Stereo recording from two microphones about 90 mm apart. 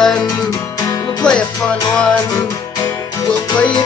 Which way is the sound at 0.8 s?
40° left (ahead or behind).